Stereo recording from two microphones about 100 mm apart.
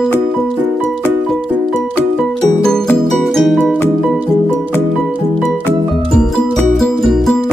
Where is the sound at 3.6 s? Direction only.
15° left (ahead or behind).